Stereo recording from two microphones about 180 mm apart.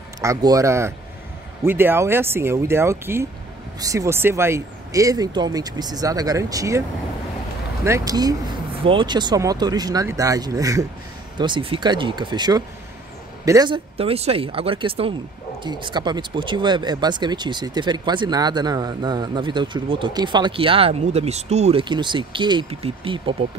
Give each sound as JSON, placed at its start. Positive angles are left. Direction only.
{"t": 0.2, "sound": "speech", "side_deg": -20}
{"t": 7.8, "sound": "speech", "side_deg": -20}
{"t": 13.9, "sound": "speech", "side_deg": -35}
{"t": 21.8, "sound": "speech", "side_deg": -25}